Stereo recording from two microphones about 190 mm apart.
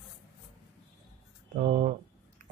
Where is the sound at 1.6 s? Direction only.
40° right (ahead or behind).